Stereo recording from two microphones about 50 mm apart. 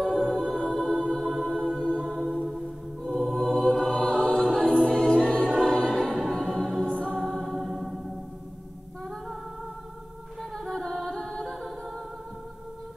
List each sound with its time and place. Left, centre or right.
0.0 s a capella: centre
1.2 s music: centre
1.6 s music: centre
2.0 s music: centre
3.6 s choir: centre
6.3 s music: centre
10.7 s music: centre